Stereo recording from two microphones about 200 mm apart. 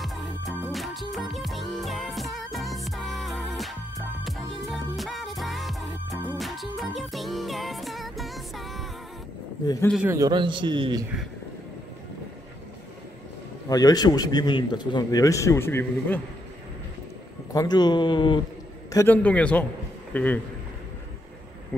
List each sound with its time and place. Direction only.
0.0 s music: centre (ahead or behind)
10.0 s a man's voice: 15° right (ahead or behind)
13.7 s a man's voice: 20° left (ahead or behind)
17.5 s a man's voice: 20° left (ahead or behind)
18.9 s a man's voice: 10° left (ahead or behind)